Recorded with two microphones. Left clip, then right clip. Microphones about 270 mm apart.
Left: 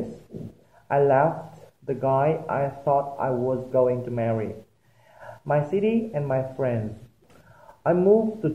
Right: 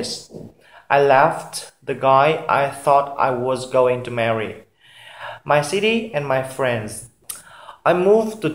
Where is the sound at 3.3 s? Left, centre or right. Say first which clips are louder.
Right 5 dB; right.